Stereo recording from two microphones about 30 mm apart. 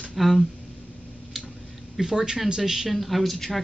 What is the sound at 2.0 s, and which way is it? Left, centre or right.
Speech, centre.